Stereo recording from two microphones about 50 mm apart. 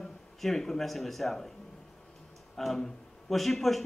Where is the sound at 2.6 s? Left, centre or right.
Centre.